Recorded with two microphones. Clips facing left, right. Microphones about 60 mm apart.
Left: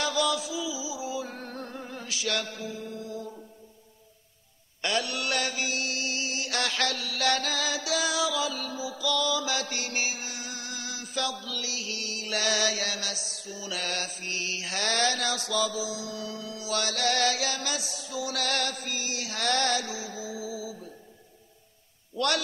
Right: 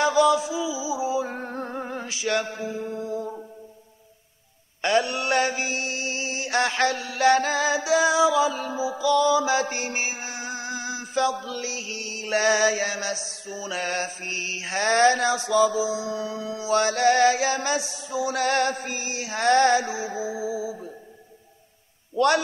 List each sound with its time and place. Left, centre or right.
0.0 s music: right
4.8 s mantra: right
22.1 s a man's voice: right